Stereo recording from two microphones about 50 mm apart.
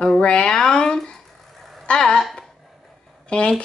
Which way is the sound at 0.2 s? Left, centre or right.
Centre.